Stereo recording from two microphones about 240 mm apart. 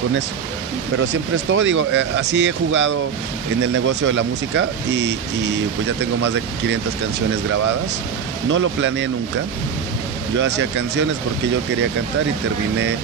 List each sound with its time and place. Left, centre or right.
1.5 s speech: right
8.5 s speech: right
10.4 s speech: right